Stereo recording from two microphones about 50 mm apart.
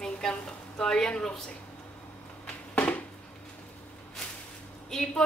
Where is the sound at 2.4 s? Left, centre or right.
Left.